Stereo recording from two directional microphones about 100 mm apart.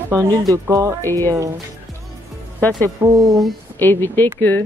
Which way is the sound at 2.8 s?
30° right (ahead or behind).